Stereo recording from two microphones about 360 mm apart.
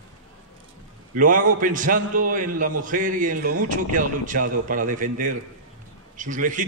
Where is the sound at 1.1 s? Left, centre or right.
Right.